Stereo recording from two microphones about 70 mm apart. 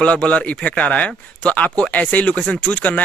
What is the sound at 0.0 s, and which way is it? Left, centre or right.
Speech, centre.